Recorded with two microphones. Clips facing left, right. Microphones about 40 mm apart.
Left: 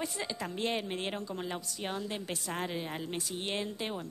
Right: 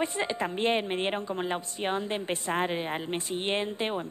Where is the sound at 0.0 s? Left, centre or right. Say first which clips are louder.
Right 7 dB; right.